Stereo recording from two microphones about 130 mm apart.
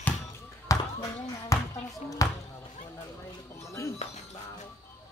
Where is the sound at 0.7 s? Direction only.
25° left (ahead or behind).